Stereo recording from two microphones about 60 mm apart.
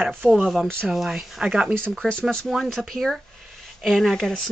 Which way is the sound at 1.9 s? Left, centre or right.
Centre.